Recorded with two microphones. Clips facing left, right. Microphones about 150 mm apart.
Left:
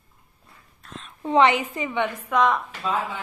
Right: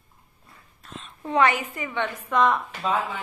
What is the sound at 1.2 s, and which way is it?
Speech, 25° left (ahead or behind).